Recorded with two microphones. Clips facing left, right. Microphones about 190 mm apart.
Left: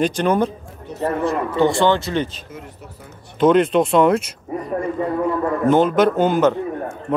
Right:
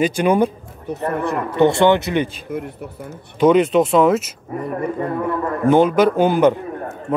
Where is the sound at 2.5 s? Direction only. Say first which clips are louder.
Right 10 dB; 60° right (ahead or behind).